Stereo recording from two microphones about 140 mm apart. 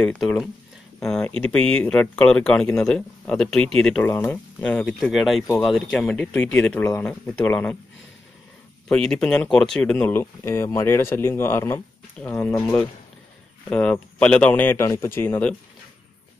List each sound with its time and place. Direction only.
0.0 s speech: 5° left (ahead or behind)
4.0 s speech: 15° left (ahead or behind)
5.1 s speech: centre (ahead or behind)
8.8 s speech: 5° left (ahead or behind)